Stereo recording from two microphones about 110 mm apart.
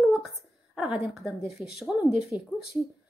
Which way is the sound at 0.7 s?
5° right (ahead or behind).